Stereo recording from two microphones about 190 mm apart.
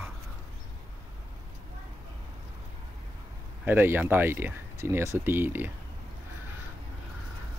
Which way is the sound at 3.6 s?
10° right (ahead or behind).